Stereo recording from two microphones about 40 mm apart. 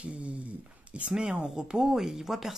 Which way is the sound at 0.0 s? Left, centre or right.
Right.